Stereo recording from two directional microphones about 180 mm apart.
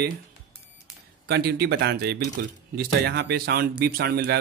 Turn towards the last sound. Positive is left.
turn(degrees=-65)  # may be behind; listen again after turning